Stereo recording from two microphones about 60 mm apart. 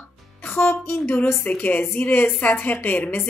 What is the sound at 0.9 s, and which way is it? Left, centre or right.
A woman's voice, left.